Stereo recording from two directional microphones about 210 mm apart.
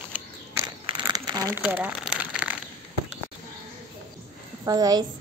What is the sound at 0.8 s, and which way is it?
Crumpling, 20° right (ahead or behind).